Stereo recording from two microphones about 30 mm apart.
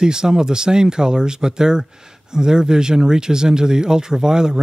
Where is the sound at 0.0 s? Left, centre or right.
Right.